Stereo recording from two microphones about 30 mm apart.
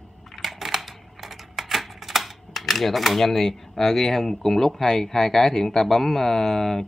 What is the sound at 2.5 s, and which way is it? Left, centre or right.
Speech, centre.